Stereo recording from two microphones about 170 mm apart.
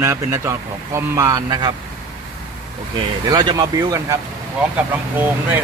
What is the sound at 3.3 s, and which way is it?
Speech, 25° right (ahead or behind).